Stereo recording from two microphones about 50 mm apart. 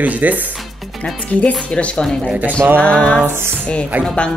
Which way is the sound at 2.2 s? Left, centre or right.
Right.